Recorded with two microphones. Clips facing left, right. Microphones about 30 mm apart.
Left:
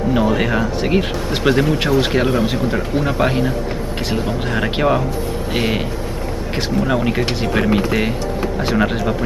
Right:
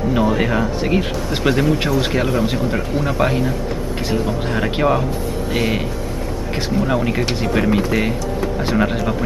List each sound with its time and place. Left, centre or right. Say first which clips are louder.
0.1 s speech: left 1 dB; centre
4.6 s speech: left 1 dB; centre
6.8 s speech: left 1 dB; centre